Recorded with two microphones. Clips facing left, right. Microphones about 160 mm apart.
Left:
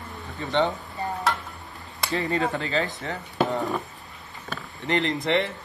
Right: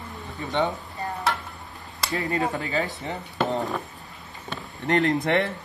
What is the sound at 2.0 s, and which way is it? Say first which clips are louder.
Speech: left 1 dB; centre (ahead or behind).